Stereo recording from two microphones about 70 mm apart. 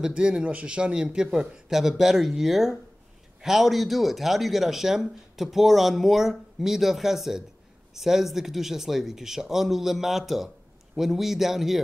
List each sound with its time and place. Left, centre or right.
0.0 s speech: centre